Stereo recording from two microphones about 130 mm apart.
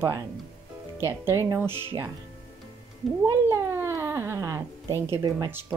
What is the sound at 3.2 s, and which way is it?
Speech, 20° right (ahead or behind).